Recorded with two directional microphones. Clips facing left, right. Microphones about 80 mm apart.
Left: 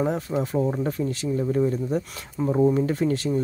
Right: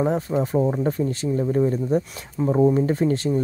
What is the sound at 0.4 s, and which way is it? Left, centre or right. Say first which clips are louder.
Speech: right 2 dB; right.